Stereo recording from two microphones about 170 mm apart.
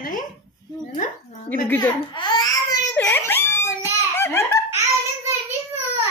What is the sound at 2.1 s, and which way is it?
Speech, 25° left (ahead or behind).